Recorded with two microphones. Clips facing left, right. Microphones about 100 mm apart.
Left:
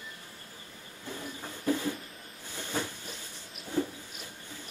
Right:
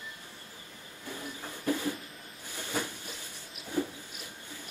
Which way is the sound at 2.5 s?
15° right (ahead or behind).